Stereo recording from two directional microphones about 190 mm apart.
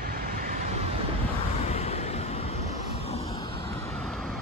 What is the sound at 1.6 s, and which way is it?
Vehicle, 35° left (ahead or behind).